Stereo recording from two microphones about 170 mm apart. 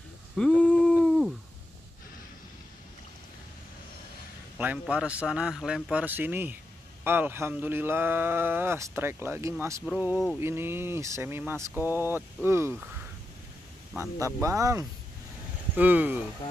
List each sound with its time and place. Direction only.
0.4 s a sound: 5° left (ahead or behind)
4.6 s speech: 10° right (ahead or behind)
14.2 s speech: 20° right (ahead or behind)